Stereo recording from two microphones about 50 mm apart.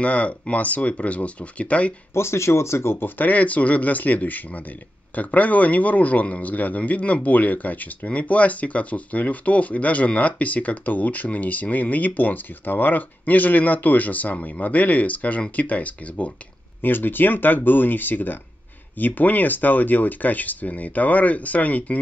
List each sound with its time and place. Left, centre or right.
0.0 s speech: left
2.1 s speech: left
3.2 s speech: left
16.8 s speech: left